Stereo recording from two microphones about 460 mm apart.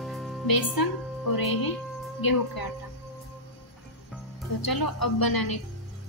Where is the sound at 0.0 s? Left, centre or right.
Centre.